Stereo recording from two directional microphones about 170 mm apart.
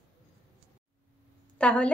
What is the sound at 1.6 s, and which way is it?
Speech, 5° left (ahead or behind).